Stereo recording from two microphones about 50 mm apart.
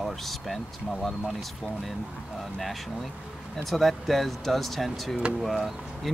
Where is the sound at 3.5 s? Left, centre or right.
Centre.